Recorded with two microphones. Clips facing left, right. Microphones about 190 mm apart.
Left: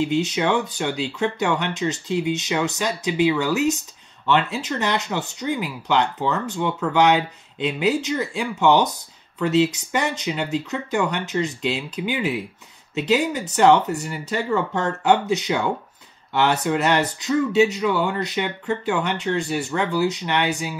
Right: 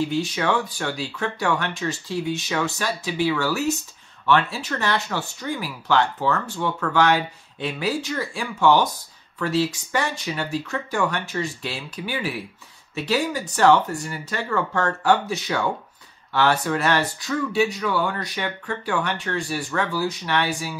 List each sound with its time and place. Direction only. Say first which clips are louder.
0.0 s speech: left 2 dB; 20° left (ahead or behind)